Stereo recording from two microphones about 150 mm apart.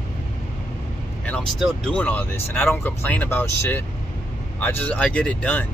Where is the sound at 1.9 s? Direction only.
10° left (ahead or behind).